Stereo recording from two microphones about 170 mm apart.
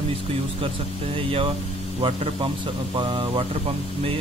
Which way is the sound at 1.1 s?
35° right (ahead or behind).